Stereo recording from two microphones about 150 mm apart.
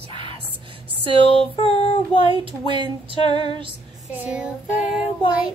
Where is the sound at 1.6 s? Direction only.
40° left (ahead or behind).